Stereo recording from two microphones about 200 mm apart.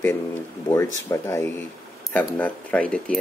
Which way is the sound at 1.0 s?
15° left (ahead or behind).